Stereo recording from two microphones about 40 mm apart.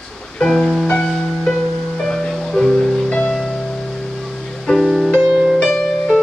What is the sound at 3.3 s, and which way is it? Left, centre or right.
Music, centre.